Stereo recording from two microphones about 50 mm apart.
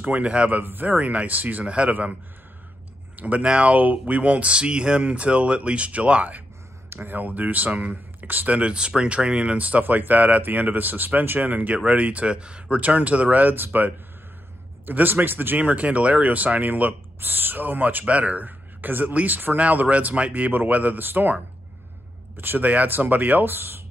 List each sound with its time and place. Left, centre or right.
0.0 s speech: right
0.5 s speech: right
3.2 s speech: right
6.9 s speech: right
8.2 s speech: right
8.5 s speech: right
14.9 s speech: right
22.4 s speech: right